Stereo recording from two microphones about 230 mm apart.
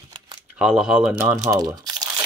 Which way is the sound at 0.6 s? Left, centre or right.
Centre.